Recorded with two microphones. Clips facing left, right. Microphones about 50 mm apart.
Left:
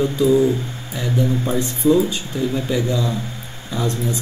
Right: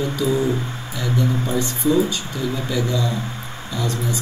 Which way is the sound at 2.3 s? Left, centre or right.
Left.